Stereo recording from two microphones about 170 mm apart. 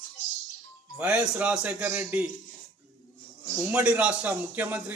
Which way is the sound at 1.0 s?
5° right (ahead or behind).